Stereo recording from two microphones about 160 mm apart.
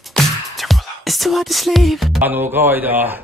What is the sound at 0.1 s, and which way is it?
Music, centre (ahead or behind).